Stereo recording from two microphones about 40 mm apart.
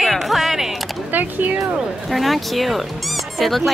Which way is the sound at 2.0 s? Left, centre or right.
Centre.